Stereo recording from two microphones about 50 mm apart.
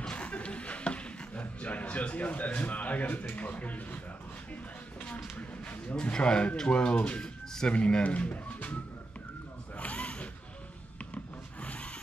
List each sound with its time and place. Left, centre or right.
0.0 s music: left
6.1 s speech: centre
9.8 s a sound: left